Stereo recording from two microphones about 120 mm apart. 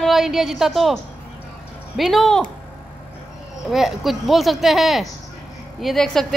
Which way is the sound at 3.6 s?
Centre (ahead or behind).